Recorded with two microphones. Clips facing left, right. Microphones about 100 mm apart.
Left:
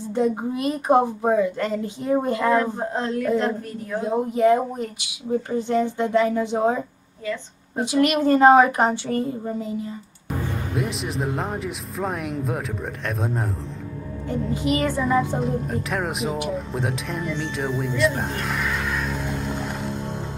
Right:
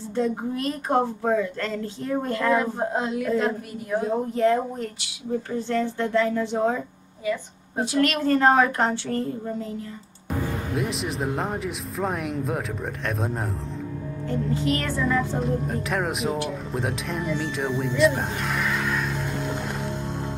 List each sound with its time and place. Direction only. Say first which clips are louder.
0.1 s speech: left 3 dB; 15° left (ahead or behind)
2.6 s child singing: even; 10° right (ahead or behind)
4.0 s speech: left 3 dB; 15° left (ahead or behind)
7.8 s speech: left 3 dB; 15° left (ahead or behind)
10.7 s speech: left 2 dB; centre (ahead or behind)
14.5 s speech: left 4 dB; 15° left (ahead or behind)
15.3 s speech: left 1 dB; centre (ahead or behind)